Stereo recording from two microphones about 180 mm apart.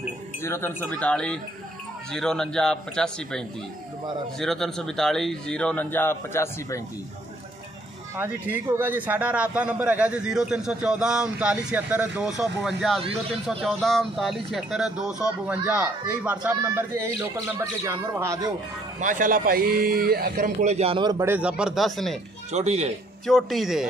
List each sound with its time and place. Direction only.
0.4 s speech: 15° left (ahead or behind)
8.2 s speech: 10° right (ahead or behind)
18.9 s a man's voice: 45° right (ahead or behind); by 22.2 s centre (ahead or behind)
22.5 s a man's voice: 40° right (ahead or behind)
23.2 s speech: centre (ahead or behind)